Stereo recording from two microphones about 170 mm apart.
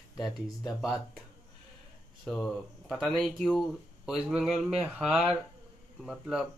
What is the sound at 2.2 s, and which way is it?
Speech, centre (ahead or behind).